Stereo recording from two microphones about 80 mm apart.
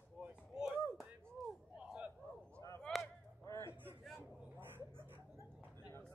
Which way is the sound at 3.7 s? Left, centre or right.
Right.